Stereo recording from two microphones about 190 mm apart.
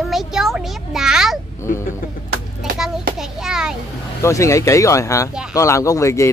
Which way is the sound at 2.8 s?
Centre (ahead or behind).